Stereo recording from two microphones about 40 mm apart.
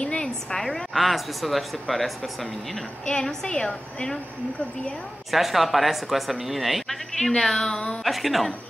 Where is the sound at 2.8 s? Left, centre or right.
Left.